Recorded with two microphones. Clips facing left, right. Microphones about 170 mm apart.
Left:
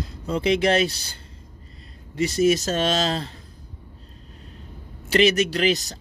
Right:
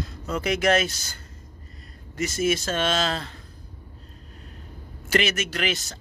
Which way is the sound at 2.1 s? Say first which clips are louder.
Left 5 dB; 35° left (ahead or behind).